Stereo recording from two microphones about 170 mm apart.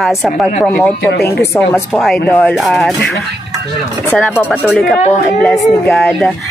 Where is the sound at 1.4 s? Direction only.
15° left (ahead or behind).